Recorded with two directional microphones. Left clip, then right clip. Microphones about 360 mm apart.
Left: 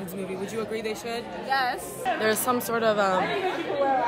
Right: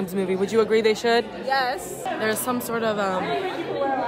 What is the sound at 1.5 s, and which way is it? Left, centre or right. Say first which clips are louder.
A woman's voice: right 1 dB; centre.